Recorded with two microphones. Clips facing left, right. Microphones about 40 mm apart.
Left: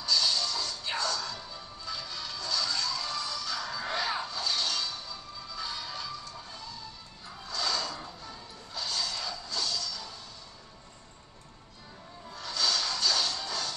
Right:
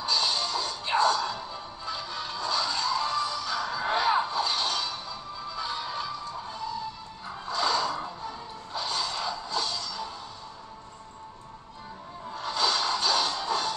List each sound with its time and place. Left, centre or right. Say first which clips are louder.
0.0 s music: right 1 dB; right
12.3 s music: right 4 dB; right